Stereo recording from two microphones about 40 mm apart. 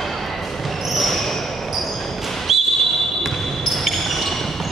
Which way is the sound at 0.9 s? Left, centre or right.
Centre.